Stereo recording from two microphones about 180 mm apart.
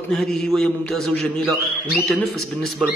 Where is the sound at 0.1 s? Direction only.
5° left (ahead or behind).